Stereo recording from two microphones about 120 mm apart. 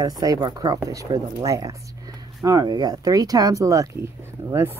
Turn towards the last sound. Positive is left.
turn(degrees=-20)  # may be behind; listen again after turning